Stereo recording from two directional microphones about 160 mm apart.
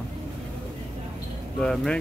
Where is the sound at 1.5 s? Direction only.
5° left (ahead or behind).